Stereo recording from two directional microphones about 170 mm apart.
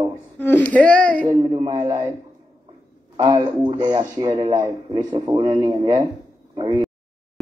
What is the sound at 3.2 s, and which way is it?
A man's voice, 30° right (ahead or behind).